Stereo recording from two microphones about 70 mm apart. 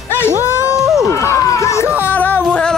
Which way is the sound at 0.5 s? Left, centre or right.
Left.